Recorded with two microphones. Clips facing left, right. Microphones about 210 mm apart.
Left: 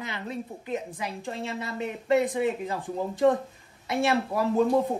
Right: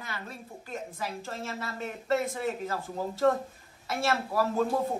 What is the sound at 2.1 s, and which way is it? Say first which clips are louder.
A woman's voice: left 5 dB; 15° left (ahead or behind).